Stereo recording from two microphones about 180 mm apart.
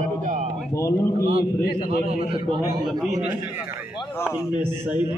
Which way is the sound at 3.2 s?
10° right (ahead or behind).